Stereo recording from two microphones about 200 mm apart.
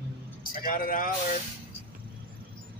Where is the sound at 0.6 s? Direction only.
40° left (ahead or behind).